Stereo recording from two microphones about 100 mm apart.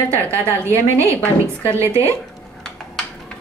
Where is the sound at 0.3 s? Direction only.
25° right (ahead or behind).